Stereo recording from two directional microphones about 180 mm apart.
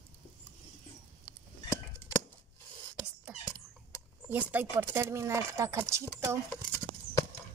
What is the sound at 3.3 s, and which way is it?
Dog, 5° right (ahead or behind).